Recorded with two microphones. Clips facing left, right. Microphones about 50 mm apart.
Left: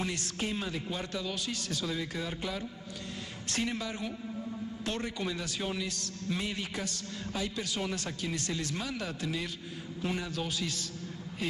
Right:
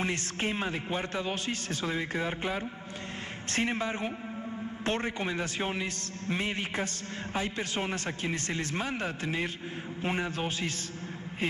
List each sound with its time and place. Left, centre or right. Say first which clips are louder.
0.0 s a man's voice: right 3 dB; right